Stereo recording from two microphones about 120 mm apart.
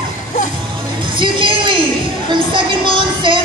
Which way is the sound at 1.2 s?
40° right (ahead or behind).